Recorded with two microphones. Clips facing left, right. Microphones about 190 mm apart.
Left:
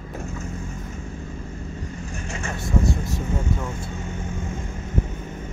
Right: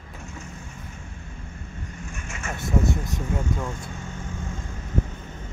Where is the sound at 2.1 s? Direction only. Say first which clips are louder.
Left 5 dB; 35° left (ahead or behind).